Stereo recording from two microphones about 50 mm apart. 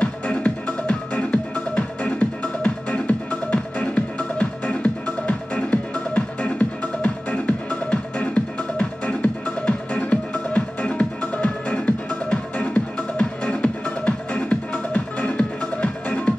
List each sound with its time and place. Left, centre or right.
0.0 s music: left